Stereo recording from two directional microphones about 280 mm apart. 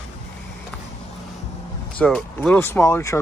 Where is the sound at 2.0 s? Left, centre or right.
Centre.